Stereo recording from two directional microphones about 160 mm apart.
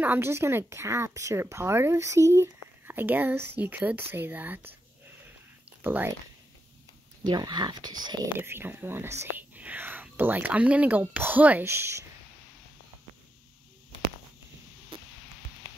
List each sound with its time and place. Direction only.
0.0 s a woman's voice: 15° right (ahead or behind)
5.7 s a sound: 10° right (ahead or behind)
7.2 s speech: 25° right (ahead or behind)
8.4 s a woman's voice: 15° right (ahead or behind)
14.9 s music: 30° right (ahead or behind)